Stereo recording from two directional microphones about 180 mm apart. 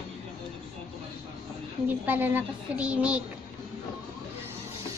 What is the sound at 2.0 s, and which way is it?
A woman's voice, 10° right (ahead or behind).